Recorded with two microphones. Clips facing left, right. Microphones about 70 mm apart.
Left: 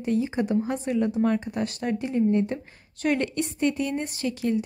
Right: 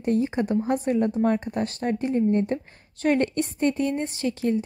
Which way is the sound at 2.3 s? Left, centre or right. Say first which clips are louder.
Right 1 dB; right.